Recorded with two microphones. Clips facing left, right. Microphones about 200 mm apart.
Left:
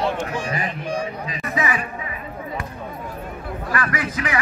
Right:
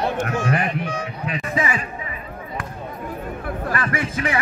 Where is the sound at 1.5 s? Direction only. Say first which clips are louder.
Even; 30° right (ahead or behind).